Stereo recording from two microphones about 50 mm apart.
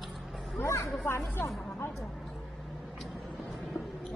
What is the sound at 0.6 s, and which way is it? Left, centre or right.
Speech, left.